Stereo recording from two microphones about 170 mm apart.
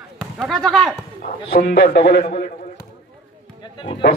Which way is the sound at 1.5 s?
70° left (ahead or behind).